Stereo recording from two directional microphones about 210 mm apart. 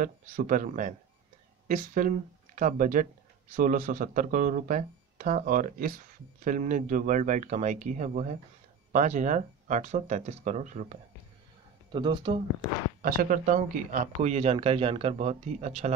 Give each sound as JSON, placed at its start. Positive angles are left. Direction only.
{"t": 0.0, "sound": "speech", "side_deg": -40}
{"t": 11.9, "sound": "speech", "side_deg": -20}
{"t": 13.0, "sound": "speech", "side_deg": -40}